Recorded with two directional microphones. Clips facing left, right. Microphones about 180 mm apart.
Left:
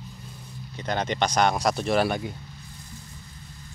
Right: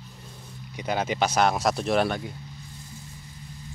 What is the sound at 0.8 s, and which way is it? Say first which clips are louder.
Speech: even; 5° right (ahead or behind).